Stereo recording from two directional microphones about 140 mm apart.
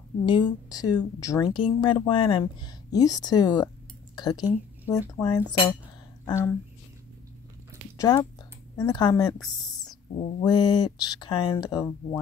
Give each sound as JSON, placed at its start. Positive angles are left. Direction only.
{"t": 0.2, "sound": "a woman's voice", "side_deg": 35}
{"t": 2.9, "sound": "a woman's voice", "side_deg": 25}
{"t": 8.0, "sound": "speech", "side_deg": 25}
{"t": 10.4, "sound": "speech", "side_deg": 30}